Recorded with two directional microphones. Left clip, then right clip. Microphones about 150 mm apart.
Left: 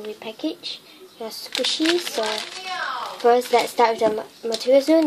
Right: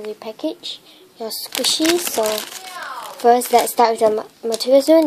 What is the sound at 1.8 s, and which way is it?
Speech, 60° right (ahead or behind).